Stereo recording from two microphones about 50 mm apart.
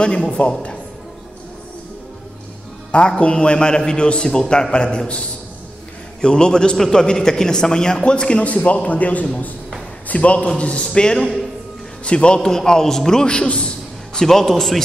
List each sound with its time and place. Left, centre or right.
0.0 s a man's voice: centre
2.9 s a man's voice: left
6.2 s a man's voice: centre
12.4 s a man's voice: centre